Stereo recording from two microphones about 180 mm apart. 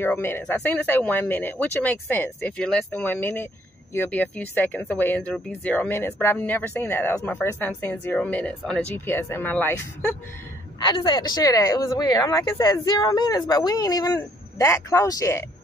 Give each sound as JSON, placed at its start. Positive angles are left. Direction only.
{"t": 0.0, "sound": "speech", "side_deg": 15}
{"t": 10.9, "sound": "speech", "side_deg": 25}